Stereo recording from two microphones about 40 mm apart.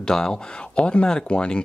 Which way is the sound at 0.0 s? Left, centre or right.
Centre.